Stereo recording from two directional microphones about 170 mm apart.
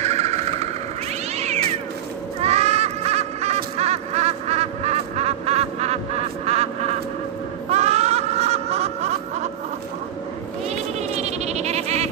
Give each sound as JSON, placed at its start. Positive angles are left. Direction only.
{"t": 0.0, "sound": "vehicle", "side_deg": -40}
{"t": 1.3, "sound": "cat", "side_deg": -40}
{"t": 2.4, "sound": "a sound", "side_deg": -40}
{"t": 7.7, "sound": "snicker", "side_deg": -40}
{"t": 11.0, "sound": "goat", "side_deg": -40}